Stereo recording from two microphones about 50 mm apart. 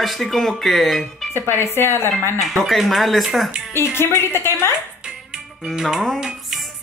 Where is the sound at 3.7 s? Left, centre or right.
Left.